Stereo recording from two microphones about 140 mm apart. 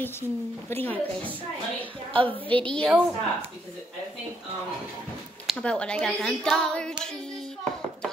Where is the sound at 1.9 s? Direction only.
40° right (ahead or behind).